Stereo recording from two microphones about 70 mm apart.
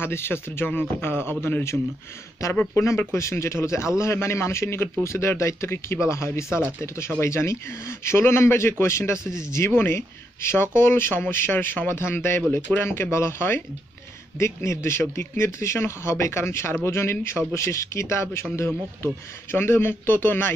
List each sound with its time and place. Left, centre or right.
0.0 s speech: left
9.7 s speech: left
12.5 s speech: left
12.8 s speech: left